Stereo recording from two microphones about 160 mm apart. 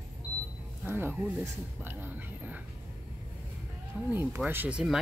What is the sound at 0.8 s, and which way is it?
Speech, 15° right (ahead or behind).